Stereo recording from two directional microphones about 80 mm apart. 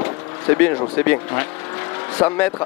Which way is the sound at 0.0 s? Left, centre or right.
Left.